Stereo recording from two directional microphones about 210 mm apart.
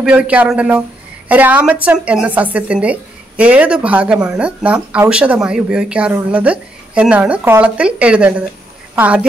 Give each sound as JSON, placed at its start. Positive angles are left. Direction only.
{"t": 0.0, "sound": "a woman's voice", "side_deg": -5}